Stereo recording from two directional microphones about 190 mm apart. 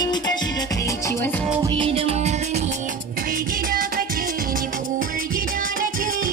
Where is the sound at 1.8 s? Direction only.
30° right (ahead or behind).